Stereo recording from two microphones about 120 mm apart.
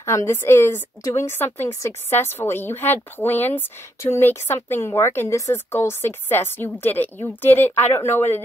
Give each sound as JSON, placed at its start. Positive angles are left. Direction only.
{"t": 0.0, "sound": "a woman's voice", "side_deg": 20}